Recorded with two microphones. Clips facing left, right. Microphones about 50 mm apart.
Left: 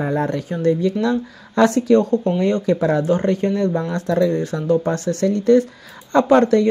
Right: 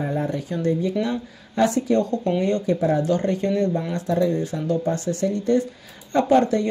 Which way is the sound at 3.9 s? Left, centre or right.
Left.